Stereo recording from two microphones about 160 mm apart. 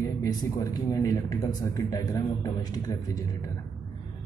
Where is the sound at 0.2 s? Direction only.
25° left (ahead or behind).